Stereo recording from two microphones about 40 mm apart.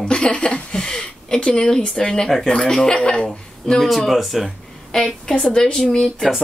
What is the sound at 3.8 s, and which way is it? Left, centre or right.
Speech, centre.